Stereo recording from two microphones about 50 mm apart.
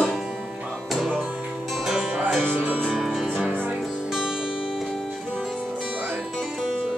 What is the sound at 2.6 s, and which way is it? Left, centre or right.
Music, right.